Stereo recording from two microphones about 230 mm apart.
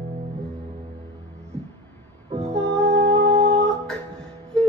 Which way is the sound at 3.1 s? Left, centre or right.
Right.